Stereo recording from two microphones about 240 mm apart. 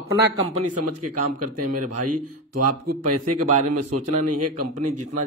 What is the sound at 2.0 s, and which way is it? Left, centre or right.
Speech, right.